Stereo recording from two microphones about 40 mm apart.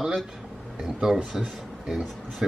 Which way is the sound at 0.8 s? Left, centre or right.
Centre.